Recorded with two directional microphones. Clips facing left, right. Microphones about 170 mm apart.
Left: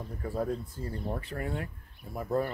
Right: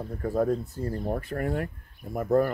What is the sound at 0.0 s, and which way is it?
Speech, 45° right (ahead or behind).